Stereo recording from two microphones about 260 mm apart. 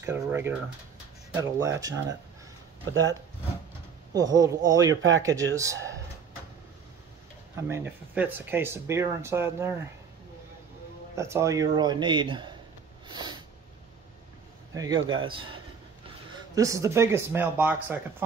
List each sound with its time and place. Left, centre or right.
0.0 s speech: centre
4.1 s speech: centre
7.6 s speech: centre
11.1 s speech: centre
14.7 s speech: centre